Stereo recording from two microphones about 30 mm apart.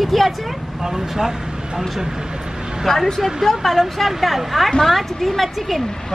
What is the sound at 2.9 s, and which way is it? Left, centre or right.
Speech, centre.